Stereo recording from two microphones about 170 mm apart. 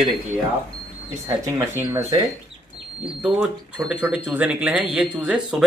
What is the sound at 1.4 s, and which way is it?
Speech, 15° right (ahead or behind).